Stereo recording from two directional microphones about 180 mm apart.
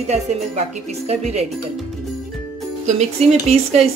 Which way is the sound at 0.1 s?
40° right (ahead or behind).